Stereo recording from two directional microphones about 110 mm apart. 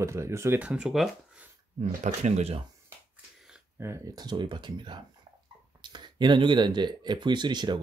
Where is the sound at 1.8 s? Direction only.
80° right.